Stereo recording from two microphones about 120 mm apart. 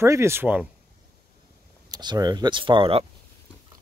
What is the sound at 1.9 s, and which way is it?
Speech, 35° right (ahead or behind).